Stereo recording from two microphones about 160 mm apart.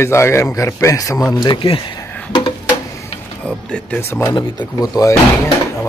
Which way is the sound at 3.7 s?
10° left (ahead or behind).